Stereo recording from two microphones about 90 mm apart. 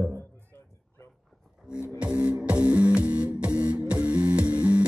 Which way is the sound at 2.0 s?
15° right (ahead or behind).